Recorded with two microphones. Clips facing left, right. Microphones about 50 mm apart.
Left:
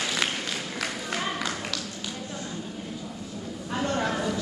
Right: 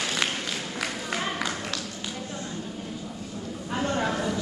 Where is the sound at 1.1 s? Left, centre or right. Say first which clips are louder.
Right 1 dB; centre.